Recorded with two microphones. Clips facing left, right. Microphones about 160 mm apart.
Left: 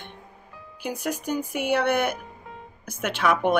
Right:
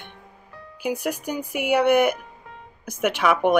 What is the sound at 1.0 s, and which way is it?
Speech, 10° right (ahead or behind).